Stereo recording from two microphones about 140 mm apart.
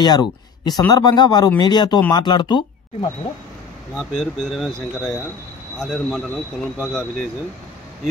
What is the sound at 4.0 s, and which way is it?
Speech, centre (ahead or behind).